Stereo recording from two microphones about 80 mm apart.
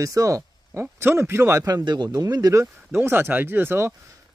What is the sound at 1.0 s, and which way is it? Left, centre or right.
Speech, right.